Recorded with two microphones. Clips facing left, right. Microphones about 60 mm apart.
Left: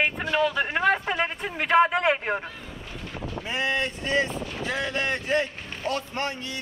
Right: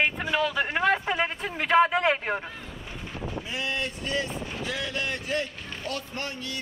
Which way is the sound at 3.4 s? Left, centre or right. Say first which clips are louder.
Left 6 dB; left.